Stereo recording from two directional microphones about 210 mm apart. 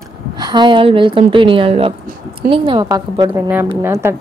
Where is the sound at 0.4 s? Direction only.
20° right (ahead or behind).